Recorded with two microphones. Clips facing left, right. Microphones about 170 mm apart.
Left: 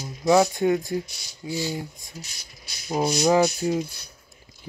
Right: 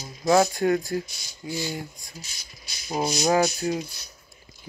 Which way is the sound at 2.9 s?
60° left (ahead or behind).